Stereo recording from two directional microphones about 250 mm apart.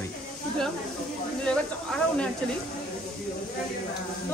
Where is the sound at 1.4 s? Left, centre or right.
Centre.